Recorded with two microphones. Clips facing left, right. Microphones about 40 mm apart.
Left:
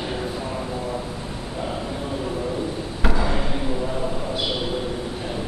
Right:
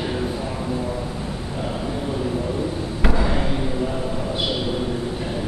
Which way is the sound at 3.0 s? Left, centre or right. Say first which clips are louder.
Right 1 dB; centre.